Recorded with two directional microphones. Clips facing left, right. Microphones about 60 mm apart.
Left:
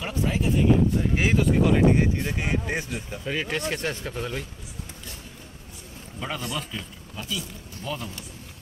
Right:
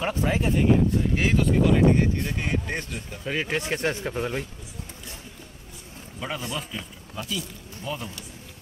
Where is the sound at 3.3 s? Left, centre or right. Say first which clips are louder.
Right 1 dB; centre.